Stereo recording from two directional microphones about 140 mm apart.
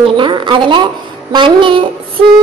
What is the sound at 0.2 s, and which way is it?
A woman's voice, 35° right (ahead or behind).